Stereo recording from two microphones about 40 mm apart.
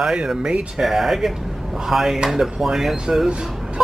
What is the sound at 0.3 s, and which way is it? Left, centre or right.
Speech, centre.